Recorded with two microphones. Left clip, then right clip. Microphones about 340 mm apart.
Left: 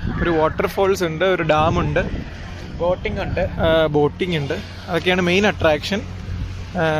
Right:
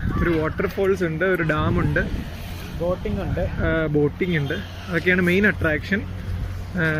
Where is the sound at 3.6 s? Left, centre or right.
Centre.